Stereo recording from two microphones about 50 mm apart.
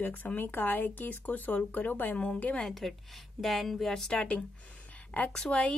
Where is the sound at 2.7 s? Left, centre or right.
Centre.